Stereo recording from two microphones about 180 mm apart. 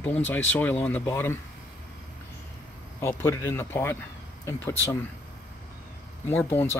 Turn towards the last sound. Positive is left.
turn(degrees=10)  # may be behind; listen again after turning